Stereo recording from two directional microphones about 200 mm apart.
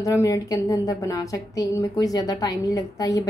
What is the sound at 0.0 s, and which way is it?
Speech, 15° left (ahead or behind).